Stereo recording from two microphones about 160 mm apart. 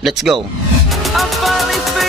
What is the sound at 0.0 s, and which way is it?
Speech, centre (ahead or behind).